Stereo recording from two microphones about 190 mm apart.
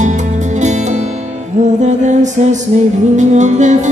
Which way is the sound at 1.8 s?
40° right (ahead or behind).